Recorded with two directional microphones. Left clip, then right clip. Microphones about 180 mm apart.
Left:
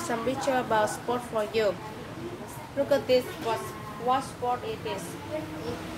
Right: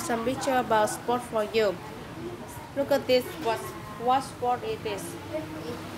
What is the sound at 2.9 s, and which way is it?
Speech, 55° right (ahead or behind).